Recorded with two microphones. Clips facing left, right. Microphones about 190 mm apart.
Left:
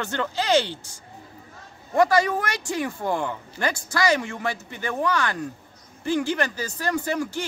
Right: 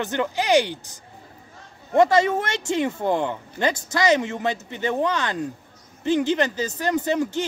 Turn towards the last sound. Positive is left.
turn(degrees=-20)  # may be behind; listen again after turning